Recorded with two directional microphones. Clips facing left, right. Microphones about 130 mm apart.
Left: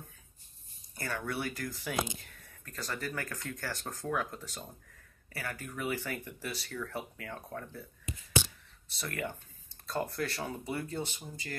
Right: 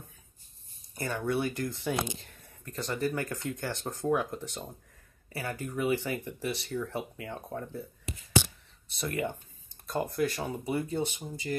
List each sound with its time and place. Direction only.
0.9 s speech: 20° right (ahead or behind)
8.1 s a sound: 75° right (ahead or behind)
8.9 s speech: 20° right (ahead or behind)